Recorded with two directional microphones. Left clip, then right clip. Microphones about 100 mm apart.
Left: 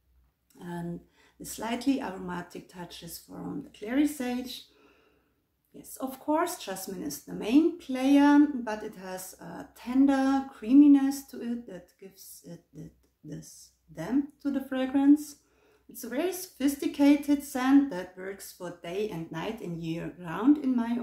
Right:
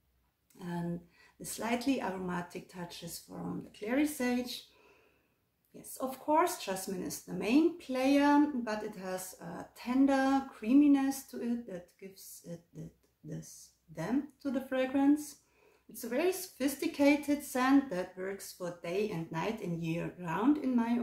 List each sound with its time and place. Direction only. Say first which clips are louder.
0.6 s a sound: left 2 dB; 20° left (ahead or behind)
1.4 s speech: left 2 dB; 20° left (ahead or behind)
5.9 s speech: left 1 dB; 15° left (ahead or behind)
13.9 s speech: left 5 dB; 15° left (ahead or behind)
15.9 s speech: left 1 dB; 20° left (ahead or behind)